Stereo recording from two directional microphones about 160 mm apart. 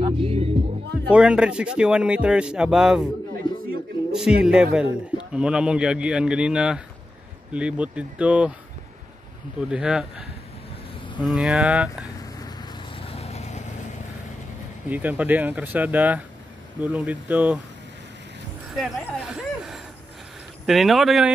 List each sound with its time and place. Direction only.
0.0 s music: 35° right (ahead or behind)
1.1 s a man's voice: 5° right (ahead or behind)
3.4 s a sound: 30° left (ahead or behind)
4.1 s a man's voice: 5° right (ahead or behind)
9.6 s a man's voice: 5° right (ahead or behind)
12.9 s vehicle: 35° left (ahead or behind)
14.9 s speech: 10° right (ahead or behind)
18.7 s a man's voice: 5° right (ahead or behind)